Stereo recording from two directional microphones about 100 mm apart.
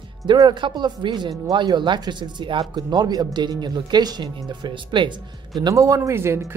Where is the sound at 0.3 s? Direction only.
50° right (ahead or behind).